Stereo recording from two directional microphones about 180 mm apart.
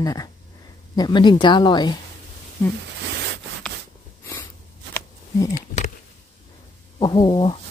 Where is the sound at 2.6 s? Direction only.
15° left (ahead or behind).